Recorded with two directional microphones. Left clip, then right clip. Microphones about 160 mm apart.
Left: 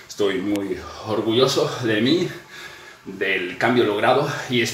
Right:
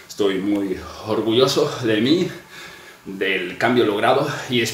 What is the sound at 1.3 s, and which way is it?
Speech, 10° right (ahead or behind).